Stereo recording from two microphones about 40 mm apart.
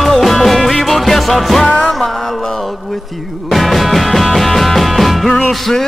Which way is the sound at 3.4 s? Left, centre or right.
Centre.